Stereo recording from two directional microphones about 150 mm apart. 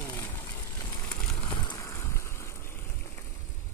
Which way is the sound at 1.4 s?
25° left (ahead or behind).